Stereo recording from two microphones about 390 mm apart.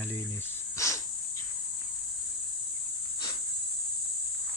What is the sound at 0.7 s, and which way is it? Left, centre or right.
Dog, centre.